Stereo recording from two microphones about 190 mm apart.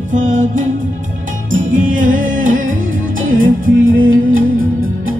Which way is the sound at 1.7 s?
45° right (ahead or behind).